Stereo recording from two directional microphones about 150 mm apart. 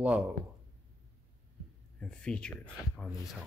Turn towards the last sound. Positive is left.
turn(degrees=5)  # may be behind; listen again after turning